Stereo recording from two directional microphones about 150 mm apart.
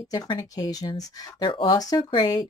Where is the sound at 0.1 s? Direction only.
30° left (ahead or behind).